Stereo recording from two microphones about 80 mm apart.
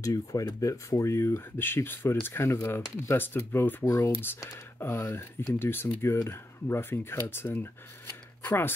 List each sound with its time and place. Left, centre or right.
0.0 s speech: left
3.8 s speech: left
4.1 s speech: left